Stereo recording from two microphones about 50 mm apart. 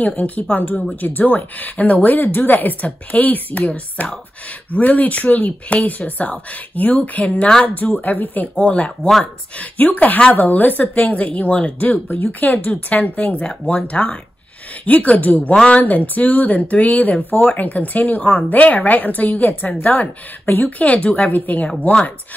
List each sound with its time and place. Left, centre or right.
0.0 s a woman's voice: left